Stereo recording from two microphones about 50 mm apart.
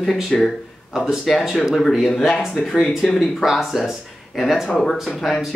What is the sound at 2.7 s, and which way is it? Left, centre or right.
Speech, centre.